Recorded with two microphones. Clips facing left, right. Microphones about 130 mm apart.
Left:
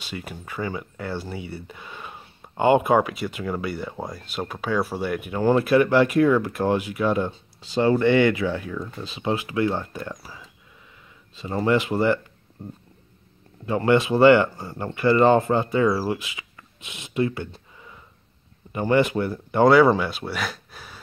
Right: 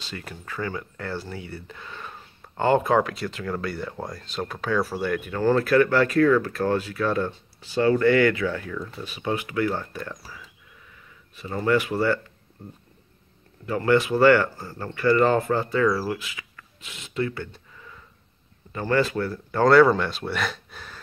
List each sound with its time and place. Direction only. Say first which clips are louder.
0.0 s speech: left 3 dB; 10° left (ahead or behind)
13.7 s speech: left 1 dB; 25° left (ahead or behind)
20.0 s speech: even; 5° left (ahead or behind)